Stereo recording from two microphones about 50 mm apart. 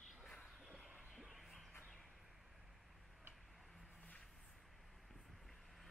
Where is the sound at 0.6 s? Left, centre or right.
Centre.